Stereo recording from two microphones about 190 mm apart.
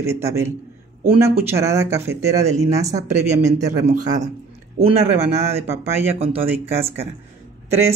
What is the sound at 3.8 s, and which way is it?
Speech, 40° right (ahead or behind).